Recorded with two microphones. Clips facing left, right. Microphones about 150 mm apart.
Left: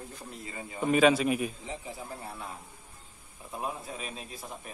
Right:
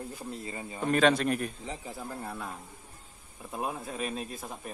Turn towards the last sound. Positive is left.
turn(degrees=-50)  # may be behind; listen again after turning